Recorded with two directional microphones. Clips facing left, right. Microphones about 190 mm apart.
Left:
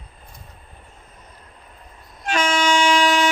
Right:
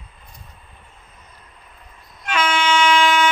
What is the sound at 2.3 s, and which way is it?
Train, 40° left (ahead or behind).